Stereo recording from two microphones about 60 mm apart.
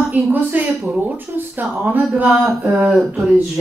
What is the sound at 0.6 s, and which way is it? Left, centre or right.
Speech, right.